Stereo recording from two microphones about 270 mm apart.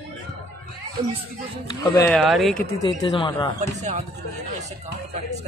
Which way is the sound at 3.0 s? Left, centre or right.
Centre.